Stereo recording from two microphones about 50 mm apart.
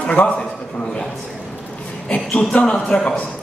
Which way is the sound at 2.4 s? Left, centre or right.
Centre.